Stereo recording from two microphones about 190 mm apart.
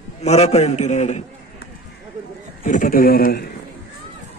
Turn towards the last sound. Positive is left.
turn(degrees=55)  # may be behind; listen again after turning